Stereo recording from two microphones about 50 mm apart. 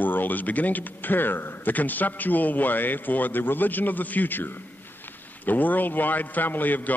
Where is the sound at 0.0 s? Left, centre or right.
Left.